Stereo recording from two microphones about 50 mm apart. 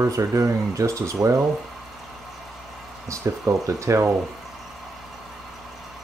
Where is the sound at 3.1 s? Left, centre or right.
Right.